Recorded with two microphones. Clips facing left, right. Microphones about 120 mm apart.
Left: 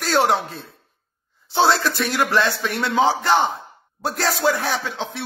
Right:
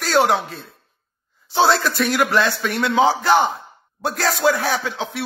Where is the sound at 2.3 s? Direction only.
35° left (ahead or behind).